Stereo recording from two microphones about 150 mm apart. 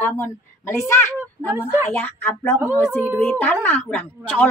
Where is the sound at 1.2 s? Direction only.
15° right (ahead or behind).